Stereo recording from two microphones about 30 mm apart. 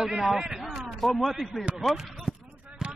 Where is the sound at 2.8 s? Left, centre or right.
Right.